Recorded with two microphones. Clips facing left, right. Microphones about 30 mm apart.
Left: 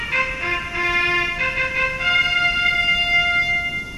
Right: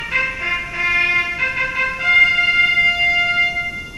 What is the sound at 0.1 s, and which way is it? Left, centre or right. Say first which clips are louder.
Music: right 2 dB; centre.